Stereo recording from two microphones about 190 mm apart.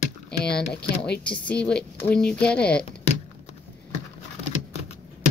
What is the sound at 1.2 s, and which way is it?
Speech, 5° left (ahead or behind).